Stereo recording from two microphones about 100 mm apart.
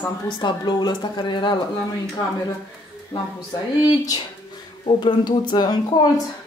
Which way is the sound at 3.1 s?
50° left (ahead or behind).